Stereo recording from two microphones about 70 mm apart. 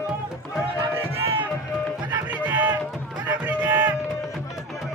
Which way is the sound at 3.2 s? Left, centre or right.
Right.